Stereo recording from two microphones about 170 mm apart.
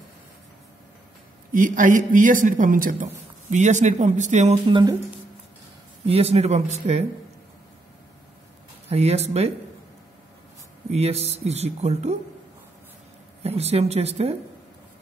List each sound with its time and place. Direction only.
1.5 s a man's voice: 50° right (ahead or behind)
4.6 s speech: 30° right (ahead or behind)
6.0 s speech: 35° right (ahead or behind)
8.8 s speech: 40° right (ahead or behind)
10.9 s speech: 40° right (ahead or behind)
13.4 s speech: 35° right (ahead or behind)